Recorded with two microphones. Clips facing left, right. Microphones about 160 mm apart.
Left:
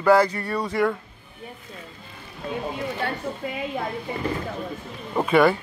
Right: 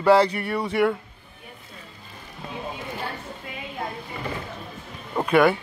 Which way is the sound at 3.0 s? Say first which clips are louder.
Left 5 dB; 70° left (ahead or behind).